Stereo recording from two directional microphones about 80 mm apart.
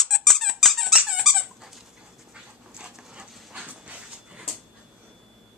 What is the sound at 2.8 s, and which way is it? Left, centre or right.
Dog, centre.